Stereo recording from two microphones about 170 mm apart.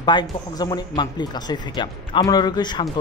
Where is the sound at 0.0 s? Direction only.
25° left (ahead or behind).